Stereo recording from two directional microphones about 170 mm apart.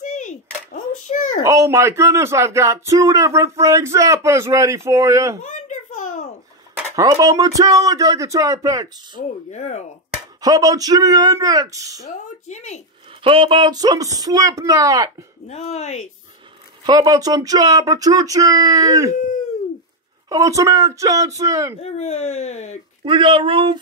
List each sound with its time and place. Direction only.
0.0 s a sound: 45° left (ahead or behind)
1.4 s speech: 15° right (ahead or behind)
5.4 s a sound: 45° left (ahead or behind)
7.0 s speech: 20° right (ahead or behind)
9.1 s speech: 45° left (ahead or behind)
10.4 s speech: 20° right (ahead or behind)
12.4 s speech: 40° left (ahead or behind)
13.2 s speech: 30° right (ahead or behind)
15.4 s speech: 40° left (ahead or behind)
16.8 s speech: 25° right (ahead or behind)
20.2 s speech: 20° right (ahead or behind)
21.8 s speech: 40° left (ahead or behind)
23.0 s speech: 30° right (ahead or behind)